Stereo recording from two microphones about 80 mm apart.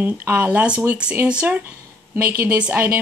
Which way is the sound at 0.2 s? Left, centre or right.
Right.